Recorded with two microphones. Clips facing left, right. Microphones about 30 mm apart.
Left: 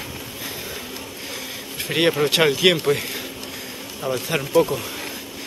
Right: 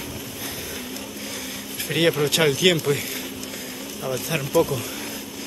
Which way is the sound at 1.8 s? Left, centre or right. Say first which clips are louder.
Left 1 dB; centre.